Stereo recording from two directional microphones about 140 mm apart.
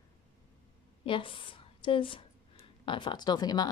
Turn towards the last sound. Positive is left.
turn(degrees=30)  # may be behind; listen again after turning